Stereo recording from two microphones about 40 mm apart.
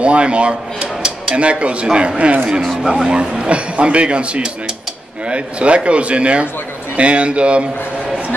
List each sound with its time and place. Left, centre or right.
0.0 s speech: right
2.8 s speech: centre
3.1 s speech: right